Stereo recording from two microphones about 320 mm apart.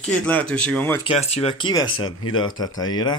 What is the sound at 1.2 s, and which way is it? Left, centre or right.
Speech, centre.